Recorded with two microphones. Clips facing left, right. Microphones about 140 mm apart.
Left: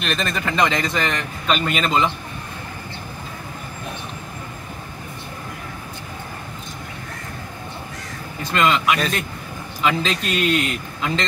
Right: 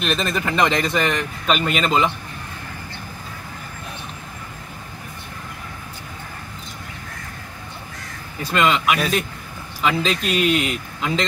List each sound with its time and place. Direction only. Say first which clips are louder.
0.0 s a man's voice: right 2 dB; 5° right (ahead or behind)
8.5 s a man's voice: even; 5° right (ahead or behind)